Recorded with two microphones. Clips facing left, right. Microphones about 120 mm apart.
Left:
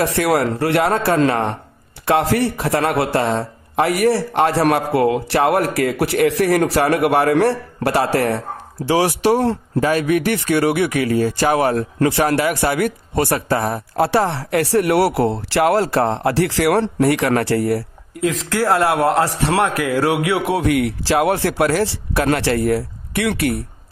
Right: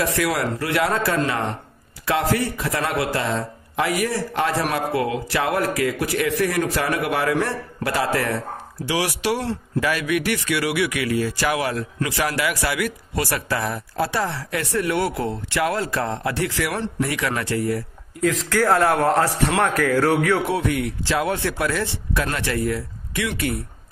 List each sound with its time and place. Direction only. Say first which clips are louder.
0.1 s speech: left 5 dB; 60° left (ahead or behind)
8.8 s speech: left 7 dB; 35° left (ahead or behind)
9.2 s speech: left 8 dB; 45° left (ahead or behind); by 17.8 s 70° left (ahead or behind)
18.5 s speech: left 1 dB; 10° left (ahead or behind)
20.5 s speech: left 5 dB; 65° left (ahead or behind)